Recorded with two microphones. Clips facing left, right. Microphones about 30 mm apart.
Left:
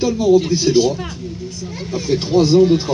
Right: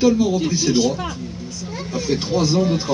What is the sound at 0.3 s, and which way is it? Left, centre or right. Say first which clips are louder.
Speech: left 7 dB; left.